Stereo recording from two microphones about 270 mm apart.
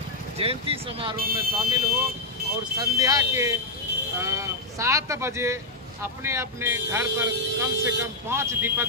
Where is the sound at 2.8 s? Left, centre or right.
Centre.